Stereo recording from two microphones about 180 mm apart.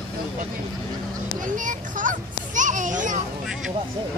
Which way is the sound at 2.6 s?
45° right (ahead or behind).